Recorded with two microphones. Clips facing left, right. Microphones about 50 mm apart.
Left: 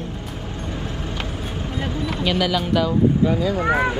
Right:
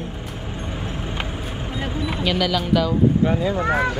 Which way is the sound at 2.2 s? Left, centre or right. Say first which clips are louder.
Even; centre.